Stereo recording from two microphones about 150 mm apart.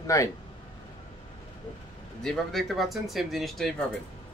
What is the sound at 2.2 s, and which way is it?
Speech, centre (ahead or behind).